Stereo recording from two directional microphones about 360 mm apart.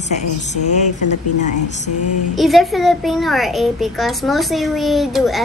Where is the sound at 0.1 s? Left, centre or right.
Centre.